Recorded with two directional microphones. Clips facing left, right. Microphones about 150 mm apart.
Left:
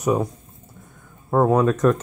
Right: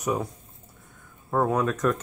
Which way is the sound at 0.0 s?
45° left (ahead or behind).